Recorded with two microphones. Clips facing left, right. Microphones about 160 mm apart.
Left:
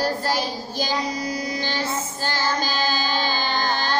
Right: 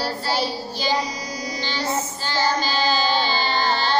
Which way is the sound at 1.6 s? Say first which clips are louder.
Left 1 dB; 50° left (ahead or behind).